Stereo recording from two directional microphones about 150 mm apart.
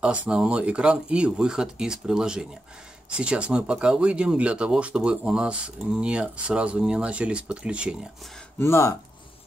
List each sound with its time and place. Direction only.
0.0 s speech: 5° right (ahead or behind)
8.5 s speech: 15° left (ahead or behind)